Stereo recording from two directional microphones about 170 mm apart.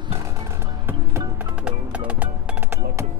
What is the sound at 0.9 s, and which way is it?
Music, 10° right (ahead or behind).